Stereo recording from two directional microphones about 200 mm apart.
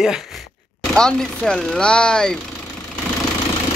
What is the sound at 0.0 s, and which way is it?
A man's voice, centre (ahead or behind).